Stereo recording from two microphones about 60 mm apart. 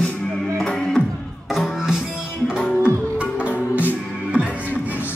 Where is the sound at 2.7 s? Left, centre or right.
Left.